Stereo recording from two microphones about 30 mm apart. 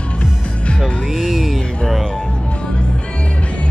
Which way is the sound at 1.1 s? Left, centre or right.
Centre.